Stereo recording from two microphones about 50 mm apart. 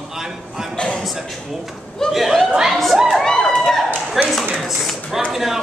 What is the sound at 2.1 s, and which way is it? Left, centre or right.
Speech, centre.